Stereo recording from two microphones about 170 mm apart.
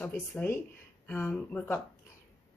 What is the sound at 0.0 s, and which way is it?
A woman's voice, 10° left (ahead or behind).